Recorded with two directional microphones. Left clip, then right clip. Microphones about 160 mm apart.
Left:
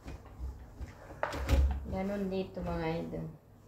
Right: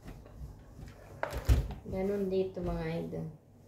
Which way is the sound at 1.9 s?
20° right (ahead or behind).